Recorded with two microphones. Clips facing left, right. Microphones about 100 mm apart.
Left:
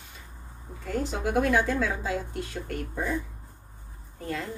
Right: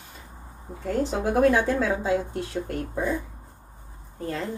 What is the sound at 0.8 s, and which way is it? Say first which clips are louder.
A woman's voice: right 4 dB; 35° right (ahead or behind).